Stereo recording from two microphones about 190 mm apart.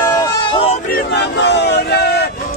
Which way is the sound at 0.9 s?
65° left (ahead or behind).